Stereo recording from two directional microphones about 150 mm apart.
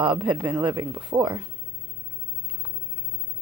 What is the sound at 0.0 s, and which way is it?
Speech, 35° right (ahead or behind).